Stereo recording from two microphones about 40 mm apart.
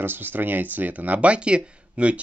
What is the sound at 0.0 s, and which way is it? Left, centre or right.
Speech, right.